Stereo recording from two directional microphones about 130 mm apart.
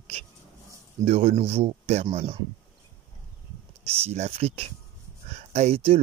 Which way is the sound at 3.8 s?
50° right (ahead or behind).